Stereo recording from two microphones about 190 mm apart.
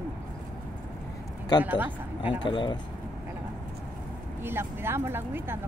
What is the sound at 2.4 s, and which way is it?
Speech, 25° left (ahead or behind).